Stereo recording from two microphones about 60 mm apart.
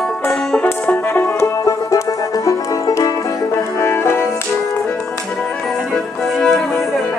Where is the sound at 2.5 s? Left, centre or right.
Left.